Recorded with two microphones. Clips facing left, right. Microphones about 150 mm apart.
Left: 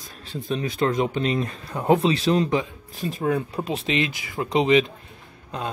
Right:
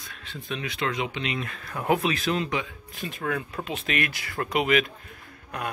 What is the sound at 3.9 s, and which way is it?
Speech, 20° left (ahead or behind).